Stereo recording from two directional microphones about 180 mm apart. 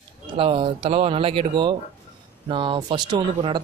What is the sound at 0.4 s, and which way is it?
Speech, 30° right (ahead or behind).